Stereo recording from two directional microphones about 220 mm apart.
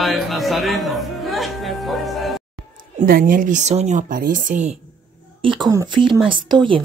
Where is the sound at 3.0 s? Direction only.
40° right (ahead or behind).